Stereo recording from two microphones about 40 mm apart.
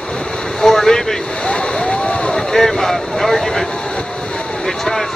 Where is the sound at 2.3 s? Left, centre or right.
Centre.